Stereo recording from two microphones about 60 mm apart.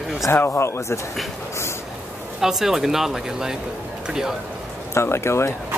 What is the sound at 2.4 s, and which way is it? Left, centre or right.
Speech, centre.